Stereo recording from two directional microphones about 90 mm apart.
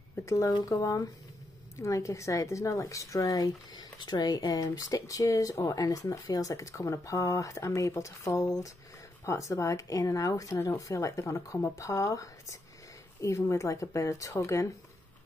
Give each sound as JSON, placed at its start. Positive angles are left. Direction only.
{"t": 0.2, "sound": "speech", "side_deg": 35}